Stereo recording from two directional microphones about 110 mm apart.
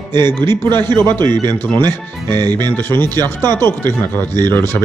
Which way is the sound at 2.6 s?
20° left (ahead or behind).